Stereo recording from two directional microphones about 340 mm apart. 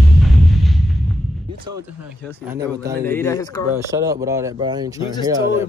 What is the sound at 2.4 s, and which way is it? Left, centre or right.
Speech, centre.